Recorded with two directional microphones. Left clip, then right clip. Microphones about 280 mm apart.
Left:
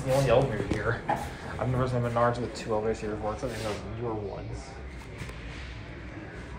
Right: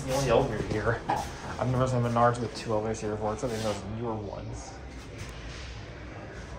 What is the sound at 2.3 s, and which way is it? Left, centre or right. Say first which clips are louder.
Speech: even; right.